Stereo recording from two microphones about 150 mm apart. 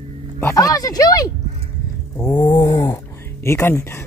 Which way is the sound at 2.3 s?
30° left (ahead or behind).